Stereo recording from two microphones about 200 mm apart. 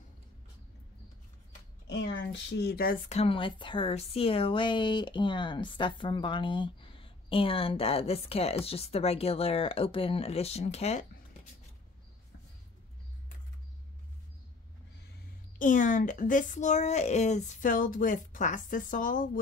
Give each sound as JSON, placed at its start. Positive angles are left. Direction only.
{"t": 1.9, "sound": "speech", "side_deg": 60}
{"t": 3.2, "sound": "speech", "side_deg": 25}
{"t": 15.6, "sound": "speech", "side_deg": 40}